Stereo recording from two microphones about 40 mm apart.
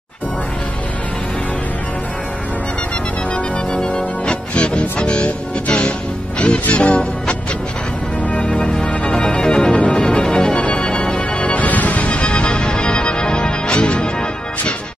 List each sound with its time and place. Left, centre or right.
3.7 s music: left
8.5 s music: left